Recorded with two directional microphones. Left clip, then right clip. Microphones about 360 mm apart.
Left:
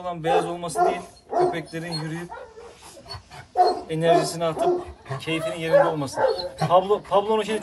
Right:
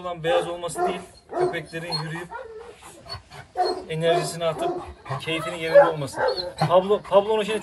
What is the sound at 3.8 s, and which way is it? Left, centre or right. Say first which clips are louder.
Speech: left 3 dB; centre.